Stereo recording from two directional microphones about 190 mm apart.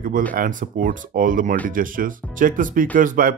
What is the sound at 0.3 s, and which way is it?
Speech, 45° right (ahead or behind).